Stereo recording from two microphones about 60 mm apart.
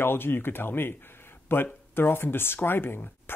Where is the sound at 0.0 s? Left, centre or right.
Left.